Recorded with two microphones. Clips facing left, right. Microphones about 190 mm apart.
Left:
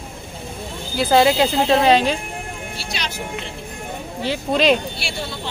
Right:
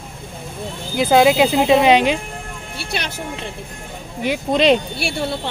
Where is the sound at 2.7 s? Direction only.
55° right (ahead or behind).